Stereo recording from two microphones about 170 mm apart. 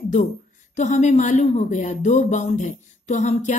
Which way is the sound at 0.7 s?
45° left (ahead or behind).